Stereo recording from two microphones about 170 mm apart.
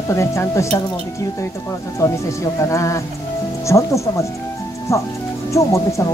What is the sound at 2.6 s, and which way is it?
Speech, 20° left (ahead or behind).